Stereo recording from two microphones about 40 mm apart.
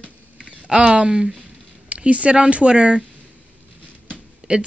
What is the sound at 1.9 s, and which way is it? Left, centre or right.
Speech, right.